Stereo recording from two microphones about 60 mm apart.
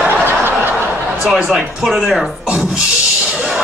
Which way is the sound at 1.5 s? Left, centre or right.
Centre.